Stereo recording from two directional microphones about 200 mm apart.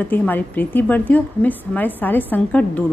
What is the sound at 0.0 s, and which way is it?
A woman's voice, 10° left (ahead or behind).